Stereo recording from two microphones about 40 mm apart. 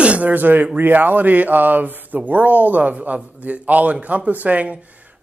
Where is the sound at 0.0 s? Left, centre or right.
Right.